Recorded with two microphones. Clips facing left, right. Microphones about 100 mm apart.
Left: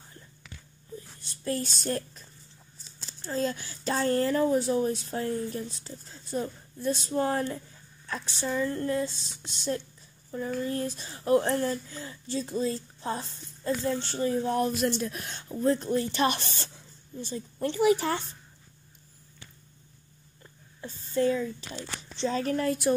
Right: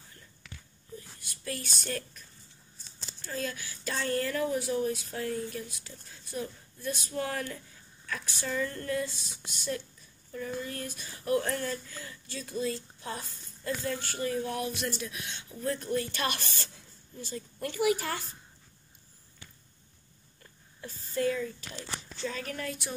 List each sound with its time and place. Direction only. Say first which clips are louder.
1.2 s a woman's voice: left 8 dB; 30° left (ahead or behind)
3.3 s speech: left 6 dB; 35° left (ahead or behind)
14.6 s speech: left 7 dB; 45° left (ahead or behind)
17.3 s speech: left 6 dB; 30° left (ahead or behind)
20.8 s speech: left 4 dB; 25° left (ahead or behind); by 22.9 s 45° left (ahead or behind)